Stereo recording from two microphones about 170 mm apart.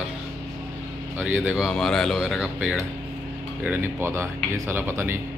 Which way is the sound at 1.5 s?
Centre (ahead or behind).